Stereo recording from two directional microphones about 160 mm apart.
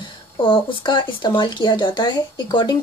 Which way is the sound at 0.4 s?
30° left (ahead or behind).